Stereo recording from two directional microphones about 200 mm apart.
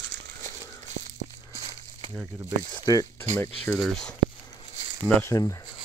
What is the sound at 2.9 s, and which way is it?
Speech, 15° left (ahead or behind).